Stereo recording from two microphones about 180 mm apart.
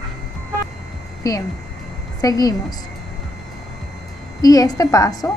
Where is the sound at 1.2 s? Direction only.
20° left (ahead or behind).